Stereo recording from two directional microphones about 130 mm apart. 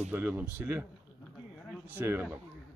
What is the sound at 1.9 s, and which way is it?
Speech, 15° right (ahead or behind).